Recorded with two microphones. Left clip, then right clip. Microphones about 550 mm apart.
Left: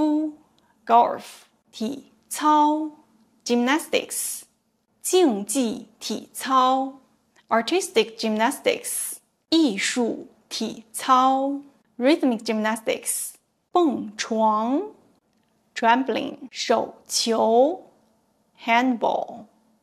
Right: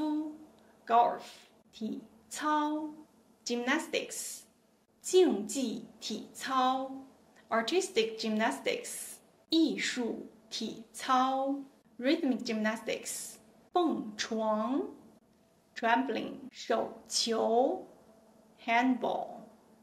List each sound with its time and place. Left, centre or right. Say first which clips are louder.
0.8 s a woman's voice: left 9 dB; left